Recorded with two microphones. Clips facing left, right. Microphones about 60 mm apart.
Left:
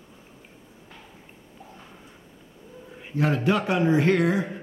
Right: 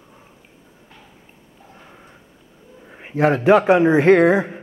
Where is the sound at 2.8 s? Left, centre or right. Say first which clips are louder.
Right 5 dB; right.